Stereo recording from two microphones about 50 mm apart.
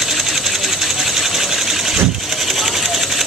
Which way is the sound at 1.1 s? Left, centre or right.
Centre.